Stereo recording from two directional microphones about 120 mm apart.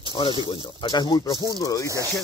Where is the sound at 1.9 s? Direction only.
30° right (ahead or behind).